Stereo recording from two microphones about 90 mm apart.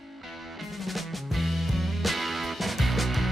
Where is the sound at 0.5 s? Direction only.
Centre (ahead or behind).